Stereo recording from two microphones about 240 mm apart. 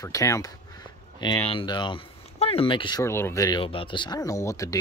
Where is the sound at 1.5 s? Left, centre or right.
Left.